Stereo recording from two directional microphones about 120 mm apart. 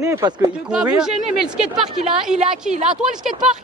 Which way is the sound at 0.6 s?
5° right (ahead or behind).